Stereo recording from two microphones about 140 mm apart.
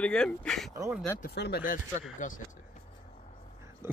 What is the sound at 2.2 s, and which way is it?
Speech, 65° left (ahead or behind).